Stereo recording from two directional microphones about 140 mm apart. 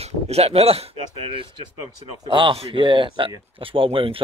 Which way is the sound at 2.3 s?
40° right (ahead or behind).